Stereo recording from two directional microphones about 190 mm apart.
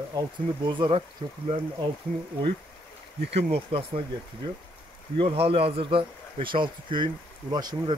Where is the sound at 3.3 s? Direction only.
30° right (ahead or behind).